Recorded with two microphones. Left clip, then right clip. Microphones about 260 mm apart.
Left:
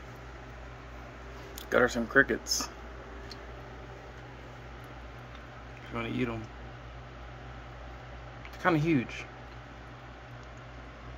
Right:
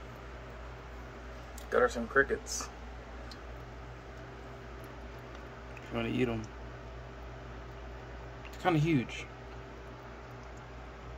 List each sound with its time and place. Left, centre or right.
1.7 s speech: left
5.9 s speech: centre
8.6 s speech: centre